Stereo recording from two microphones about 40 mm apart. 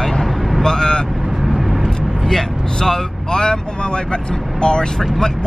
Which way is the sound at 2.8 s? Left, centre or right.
Centre.